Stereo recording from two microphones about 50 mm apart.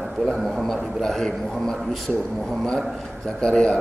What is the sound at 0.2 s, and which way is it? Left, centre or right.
A man's voice, centre.